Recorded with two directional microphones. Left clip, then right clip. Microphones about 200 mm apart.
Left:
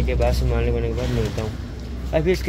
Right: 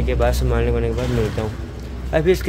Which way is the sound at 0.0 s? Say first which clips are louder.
Right 3 dB; 15° right (ahead or behind).